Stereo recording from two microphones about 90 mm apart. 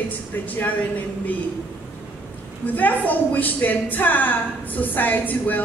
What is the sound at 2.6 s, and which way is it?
A woman's voice, 20° left (ahead or behind).